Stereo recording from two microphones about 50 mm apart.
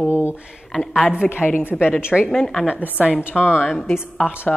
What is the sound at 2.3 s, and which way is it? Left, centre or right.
Speech, centre.